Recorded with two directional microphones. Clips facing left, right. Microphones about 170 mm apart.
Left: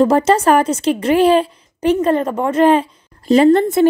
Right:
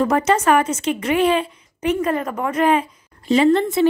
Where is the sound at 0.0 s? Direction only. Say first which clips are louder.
Left 5 dB; 30° left (ahead or behind).